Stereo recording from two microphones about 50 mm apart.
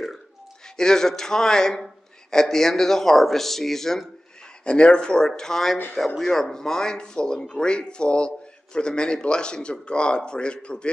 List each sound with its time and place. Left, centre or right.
0.7 s speech: centre
4.6 s a man's voice: left